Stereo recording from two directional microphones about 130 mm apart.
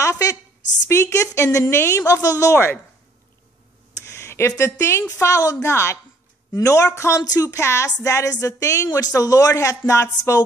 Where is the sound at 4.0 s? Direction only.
20° left (ahead or behind).